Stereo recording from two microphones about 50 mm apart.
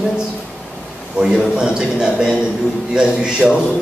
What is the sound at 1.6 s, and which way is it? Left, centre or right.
Speech, centre.